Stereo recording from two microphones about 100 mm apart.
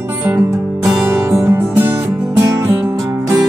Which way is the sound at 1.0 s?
20° right (ahead or behind).